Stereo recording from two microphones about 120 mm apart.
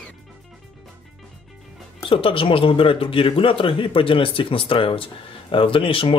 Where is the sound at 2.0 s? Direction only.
45° left (ahead or behind).